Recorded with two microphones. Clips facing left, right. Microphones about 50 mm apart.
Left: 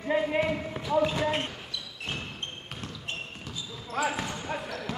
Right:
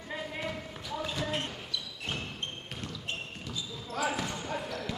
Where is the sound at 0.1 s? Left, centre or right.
Left.